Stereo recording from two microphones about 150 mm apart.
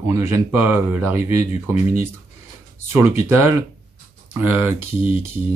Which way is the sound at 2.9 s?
15° right (ahead or behind).